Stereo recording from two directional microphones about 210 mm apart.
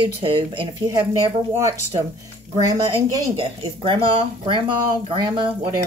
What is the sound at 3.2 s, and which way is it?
Speech, 25° right (ahead or behind).